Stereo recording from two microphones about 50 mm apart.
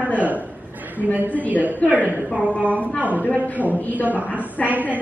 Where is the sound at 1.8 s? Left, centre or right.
Left.